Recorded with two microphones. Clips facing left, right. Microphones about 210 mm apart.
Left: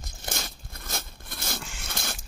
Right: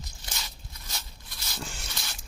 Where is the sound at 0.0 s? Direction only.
50° left (ahead or behind).